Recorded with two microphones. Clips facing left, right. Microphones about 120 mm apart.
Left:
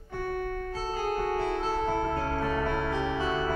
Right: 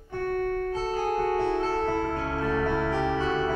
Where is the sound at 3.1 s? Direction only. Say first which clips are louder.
Right 3 dB; 10° left (ahead or behind).